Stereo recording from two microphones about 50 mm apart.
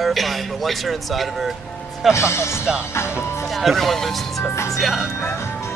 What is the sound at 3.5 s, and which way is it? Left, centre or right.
Speech, centre.